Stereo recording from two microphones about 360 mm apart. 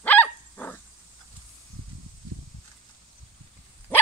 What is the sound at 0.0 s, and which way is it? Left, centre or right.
Dog, centre.